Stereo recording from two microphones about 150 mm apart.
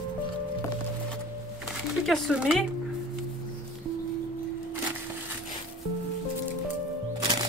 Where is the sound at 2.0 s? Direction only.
Centre (ahead or behind).